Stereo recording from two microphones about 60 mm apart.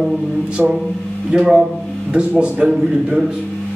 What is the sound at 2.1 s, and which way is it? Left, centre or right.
Speech, centre.